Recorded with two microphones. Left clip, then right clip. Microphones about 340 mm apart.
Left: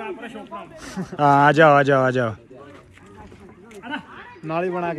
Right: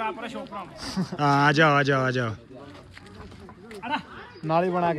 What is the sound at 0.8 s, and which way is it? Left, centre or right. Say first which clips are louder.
Speech: right 1 dB; right.